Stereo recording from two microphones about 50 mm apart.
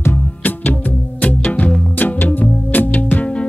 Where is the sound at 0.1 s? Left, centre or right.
Left.